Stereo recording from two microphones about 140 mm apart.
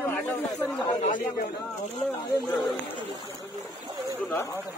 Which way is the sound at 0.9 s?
70° left (ahead or behind).